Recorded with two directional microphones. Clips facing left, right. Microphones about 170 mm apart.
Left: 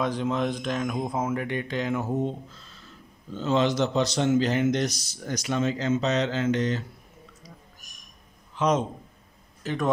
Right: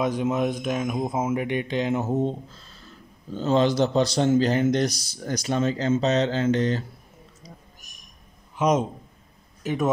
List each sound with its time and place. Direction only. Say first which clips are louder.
0.0 s speech: right 3 dB; 10° right (ahead or behind)
1.3 s a man's voice: right 3 dB; 20° right (ahead or behind)
8.5 s a man's voice: right 2 dB; 10° right (ahead or behind)
9.6 s a sound: right 3 dB; 10° right (ahead or behind)